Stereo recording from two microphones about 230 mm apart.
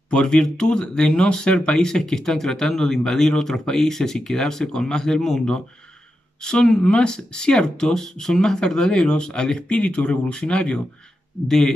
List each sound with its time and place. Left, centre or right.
0.1 s speech: centre